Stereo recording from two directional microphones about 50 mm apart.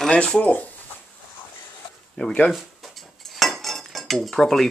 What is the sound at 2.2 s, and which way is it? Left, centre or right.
Speech, left.